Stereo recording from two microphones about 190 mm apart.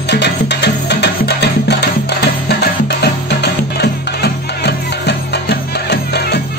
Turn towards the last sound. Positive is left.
turn(degrees=60)  # may be behind; listen again after turning